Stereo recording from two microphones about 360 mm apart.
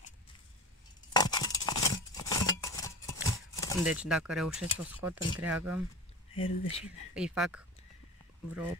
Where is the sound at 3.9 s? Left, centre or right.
Centre.